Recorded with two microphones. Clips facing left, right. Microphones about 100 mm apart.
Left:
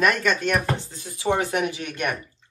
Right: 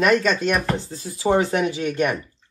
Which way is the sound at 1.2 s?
30° right (ahead or behind).